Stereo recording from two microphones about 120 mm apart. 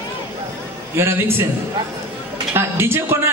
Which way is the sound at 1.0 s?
20° right (ahead or behind).